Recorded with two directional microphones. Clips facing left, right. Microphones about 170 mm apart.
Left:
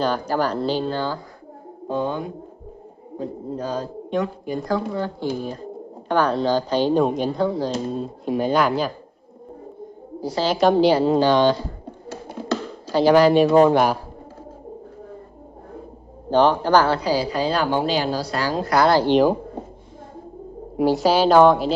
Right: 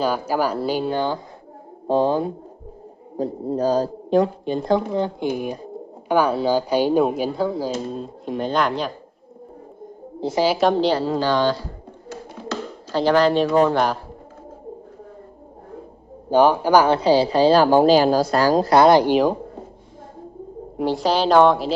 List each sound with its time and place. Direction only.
0.0 s speech: 10° right (ahead or behind)
1.9 s a woman's voice: 30° right (ahead or behind); by 8.9 s 5° left (ahead or behind)
10.4 s speech: 10° right (ahead or behind)
10.7 s speech: 10° left (ahead or behind)
12.9 s speech: 10° left (ahead or behind)
16.3 s speech: 10° right (ahead or behind)
17.0 s a woman's voice: 25° right (ahead or behind); by 18.7 s 45° right (ahead or behind)
18.7 s speech: 20° right (ahead or behind)
20.7 s a woman's voice: 5° left (ahead or behind)